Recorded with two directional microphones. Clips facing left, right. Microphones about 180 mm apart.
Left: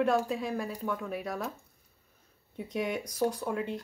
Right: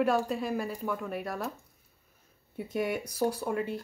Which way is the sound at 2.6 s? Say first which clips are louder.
Right 1 dB; 5° right (ahead or behind).